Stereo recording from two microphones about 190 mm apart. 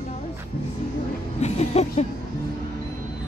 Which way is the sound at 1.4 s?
35° left (ahead or behind).